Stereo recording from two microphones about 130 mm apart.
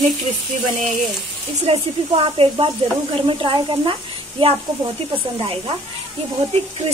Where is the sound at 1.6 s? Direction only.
45° right (ahead or behind).